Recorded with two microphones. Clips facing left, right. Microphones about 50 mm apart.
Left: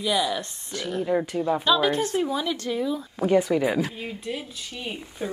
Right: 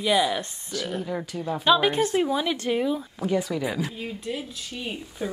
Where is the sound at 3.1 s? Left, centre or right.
Left.